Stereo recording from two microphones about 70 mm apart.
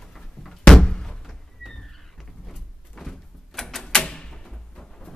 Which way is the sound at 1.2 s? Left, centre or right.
Centre.